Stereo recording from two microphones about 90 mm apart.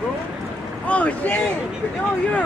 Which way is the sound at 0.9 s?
15° left (ahead or behind).